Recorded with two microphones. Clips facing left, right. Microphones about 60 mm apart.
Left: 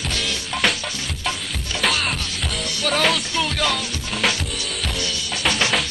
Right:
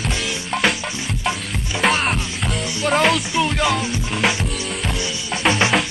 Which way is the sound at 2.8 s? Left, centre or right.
Centre.